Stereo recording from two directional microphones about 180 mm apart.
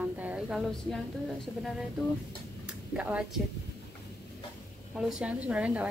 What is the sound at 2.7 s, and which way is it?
Speech, 5° right (ahead or behind).